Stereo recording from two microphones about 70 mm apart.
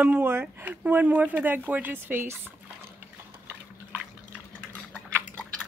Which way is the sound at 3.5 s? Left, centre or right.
Right.